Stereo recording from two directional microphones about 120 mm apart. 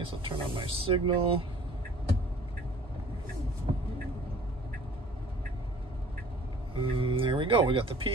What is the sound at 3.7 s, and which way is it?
Vehicle, 55° right (ahead or behind).